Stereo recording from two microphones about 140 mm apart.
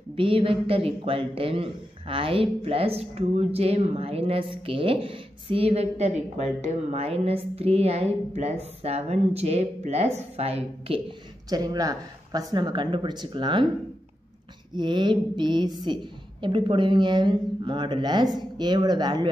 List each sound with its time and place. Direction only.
0.1 s a man's voice: 40° right (ahead or behind)
11.4 s a woman's voice: 30° right (ahead or behind)
14.8 s a woman's voice: 35° right (ahead or behind)